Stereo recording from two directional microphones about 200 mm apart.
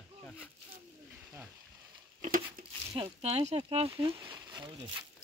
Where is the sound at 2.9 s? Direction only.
30° right (ahead or behind).